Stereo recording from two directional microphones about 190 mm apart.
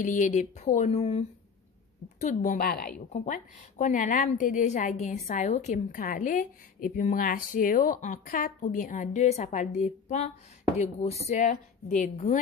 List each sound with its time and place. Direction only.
0.0 s a woman's voice: 40° left (ahead or behind)